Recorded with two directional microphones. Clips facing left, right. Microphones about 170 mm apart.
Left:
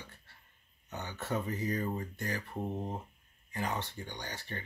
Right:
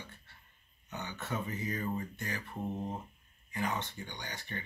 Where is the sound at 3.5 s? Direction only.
35° left (ahead or behind).